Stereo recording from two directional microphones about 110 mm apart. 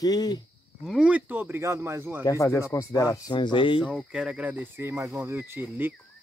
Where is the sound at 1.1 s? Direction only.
15° right (ahead or behind).